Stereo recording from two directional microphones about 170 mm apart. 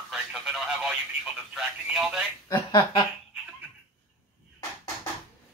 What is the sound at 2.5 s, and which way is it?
Speech, 25° left (ahead or behind).